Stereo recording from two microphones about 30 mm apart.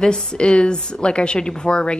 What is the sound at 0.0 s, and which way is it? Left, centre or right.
A woman's voice, left.